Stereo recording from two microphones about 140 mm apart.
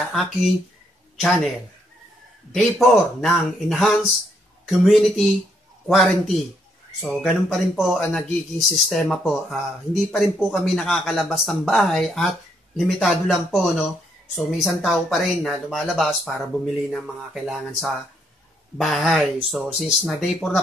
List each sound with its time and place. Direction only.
0.0 s speech: centre (ahead or behind)
7.4 s speech: centre (ahead or behind)